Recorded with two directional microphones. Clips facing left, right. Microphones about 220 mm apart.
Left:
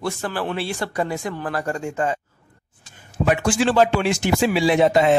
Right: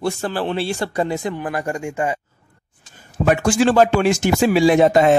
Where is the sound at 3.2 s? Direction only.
45° right (ahead or behind).